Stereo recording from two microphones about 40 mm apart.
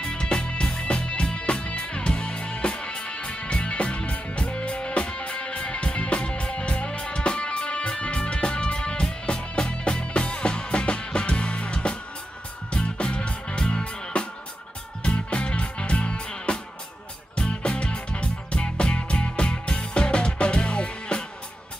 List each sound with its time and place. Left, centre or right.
0.0 s music: left